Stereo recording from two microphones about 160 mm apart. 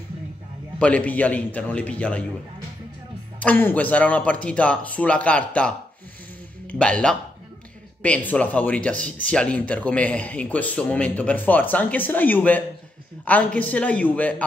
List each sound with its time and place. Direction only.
0.7 s speech: 10° left (ahead or behind)
3.3 s speech: 10° left (ahead or behind)
6.7 s speech: 5° left (ahead or behind)